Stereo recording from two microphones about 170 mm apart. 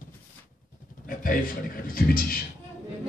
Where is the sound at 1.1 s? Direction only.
55° left (ahead or behind).